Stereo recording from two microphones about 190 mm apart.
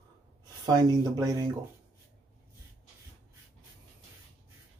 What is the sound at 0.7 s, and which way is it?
Speech, 20° right (ahead or behind).